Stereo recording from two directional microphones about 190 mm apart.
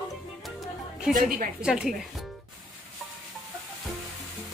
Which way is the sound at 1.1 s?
45° right (ahead or behind).